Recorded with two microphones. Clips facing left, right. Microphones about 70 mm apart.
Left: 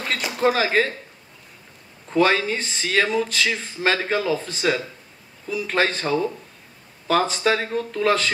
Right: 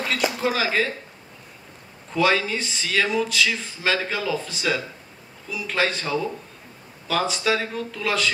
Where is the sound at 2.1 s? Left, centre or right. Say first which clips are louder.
Left 2 dB; left.